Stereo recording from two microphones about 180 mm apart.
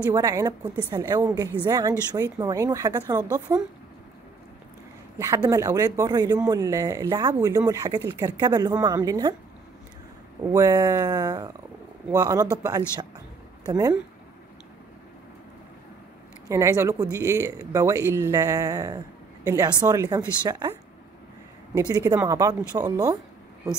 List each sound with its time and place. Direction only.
0.0 s speech: 20° right (ahead or behind)
5.2 s speech: 15° right (ahead or behind)
10.4 s speech: 20° right (ahead or behind)
16.4 s speech: 15° right (ahead or behind)
21.7 s speech: 15° right (ahead or behind)